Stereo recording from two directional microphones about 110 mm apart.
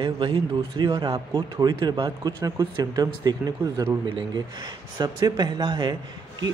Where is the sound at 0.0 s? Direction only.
45° right (ahead or behind).